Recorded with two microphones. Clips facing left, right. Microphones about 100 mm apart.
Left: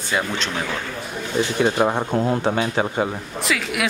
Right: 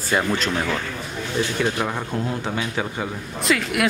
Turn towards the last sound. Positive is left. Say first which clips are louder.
# right 2 dB
turn(degrees=0)  # may be behind; listen again after turning